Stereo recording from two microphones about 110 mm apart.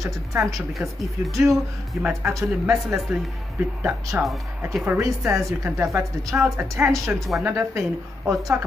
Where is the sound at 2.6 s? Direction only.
5° right (ahead or behind).